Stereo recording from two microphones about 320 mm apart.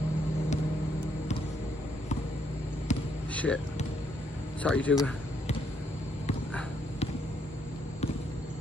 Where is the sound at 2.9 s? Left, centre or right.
Left.